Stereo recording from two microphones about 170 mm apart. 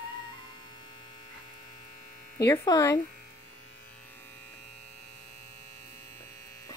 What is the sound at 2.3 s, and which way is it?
Speech, 20° left (ahead or behind).